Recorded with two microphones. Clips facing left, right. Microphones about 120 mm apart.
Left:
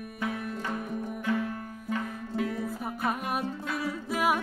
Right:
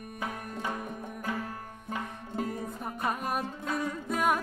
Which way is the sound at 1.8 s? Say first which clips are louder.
Left 4 dB; 40° right (ahead or behind).